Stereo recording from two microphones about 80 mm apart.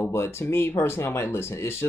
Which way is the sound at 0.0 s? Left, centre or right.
Left.